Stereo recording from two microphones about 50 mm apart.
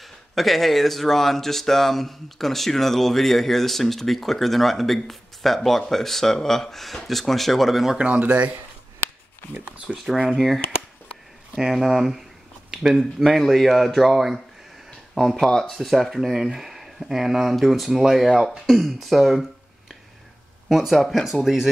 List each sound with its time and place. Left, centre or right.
0.0 s speech: centre
8.0 s speech: right
9.9 s speech: centre
11.7 s speech: centre
18.3 s speech: centre
18.7 s speech: centre
20.6 s speech: centre